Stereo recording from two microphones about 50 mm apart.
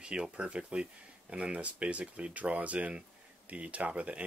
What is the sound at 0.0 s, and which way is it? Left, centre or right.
Speech, centre.